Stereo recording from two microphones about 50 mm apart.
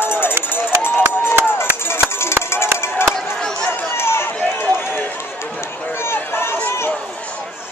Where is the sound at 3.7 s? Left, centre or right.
Left.